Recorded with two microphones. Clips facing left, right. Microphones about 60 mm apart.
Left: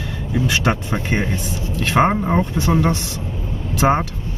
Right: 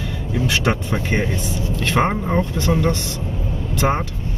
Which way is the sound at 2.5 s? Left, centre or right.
Left.